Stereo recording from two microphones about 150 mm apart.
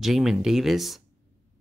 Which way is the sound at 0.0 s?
Centre (ahead or behind).